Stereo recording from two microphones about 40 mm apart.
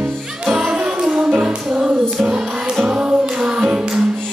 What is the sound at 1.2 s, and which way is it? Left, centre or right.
Music, right.